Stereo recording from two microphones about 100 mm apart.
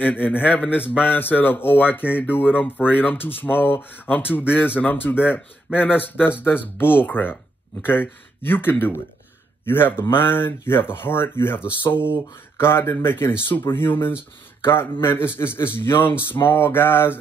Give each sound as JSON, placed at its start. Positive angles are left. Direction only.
{"t": 0.0, "sound": "a man's voice", "side_deg": 20}